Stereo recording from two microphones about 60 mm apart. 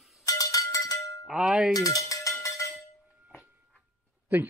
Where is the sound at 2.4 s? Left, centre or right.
Left.